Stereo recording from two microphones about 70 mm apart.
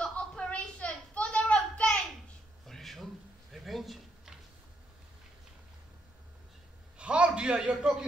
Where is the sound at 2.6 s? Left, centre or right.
Centre.